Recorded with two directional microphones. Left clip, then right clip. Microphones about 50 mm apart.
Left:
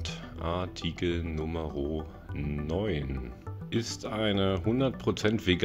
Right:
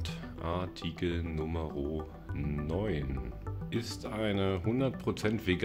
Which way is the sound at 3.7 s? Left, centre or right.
Left.